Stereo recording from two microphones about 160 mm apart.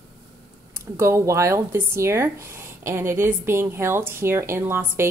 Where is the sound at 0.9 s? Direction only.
15° right (ahead or behind).